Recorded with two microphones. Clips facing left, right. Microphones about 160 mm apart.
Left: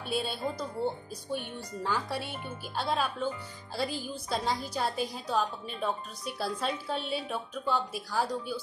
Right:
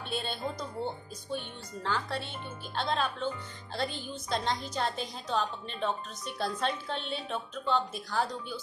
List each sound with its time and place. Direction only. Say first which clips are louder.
0.1 s speech: left 3 dB; 5° left (ahead or behind)